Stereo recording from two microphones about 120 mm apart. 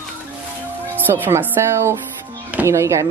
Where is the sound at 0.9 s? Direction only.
15° right (ahead or behind).